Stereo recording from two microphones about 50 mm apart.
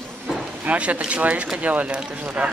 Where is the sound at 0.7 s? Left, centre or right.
Right.